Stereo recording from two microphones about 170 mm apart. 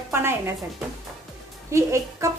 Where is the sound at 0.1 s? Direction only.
15° right (ahead or behind).